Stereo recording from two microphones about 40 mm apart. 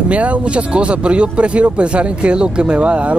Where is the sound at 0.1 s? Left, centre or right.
Right.